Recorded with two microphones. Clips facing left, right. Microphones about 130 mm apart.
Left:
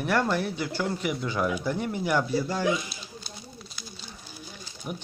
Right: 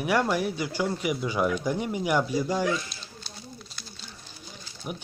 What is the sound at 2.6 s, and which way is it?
Speech, 15° left (ahead or behind).